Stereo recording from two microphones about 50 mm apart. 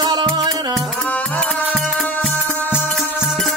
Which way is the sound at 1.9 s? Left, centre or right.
Centre.